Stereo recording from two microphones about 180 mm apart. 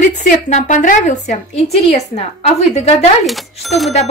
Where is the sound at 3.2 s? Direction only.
Centre (ahead or behind).